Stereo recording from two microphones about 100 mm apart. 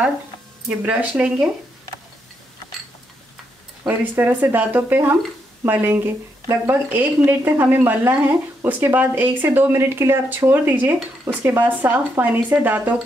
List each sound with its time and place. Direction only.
0.8 s speech: 15° right (ahead or behind)
3.8 s speech: 20° right (ahead or behind)